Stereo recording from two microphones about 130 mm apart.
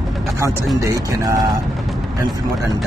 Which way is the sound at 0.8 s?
25° right (ahead or behind).